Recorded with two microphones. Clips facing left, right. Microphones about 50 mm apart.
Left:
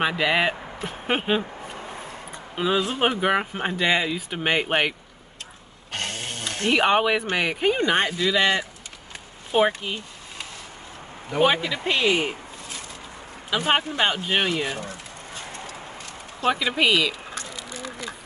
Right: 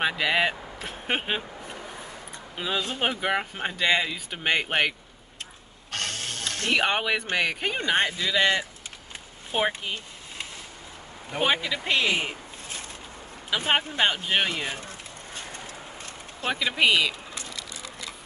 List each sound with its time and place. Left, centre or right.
0.0 s speech: centre
2.5 s speech: centre
5.9 s snoring: centre
6.8 s speech: centre
11.3 s speech: centre
13.7 s speech: centre
16.4 s speech: centre
17.6 s a sound: left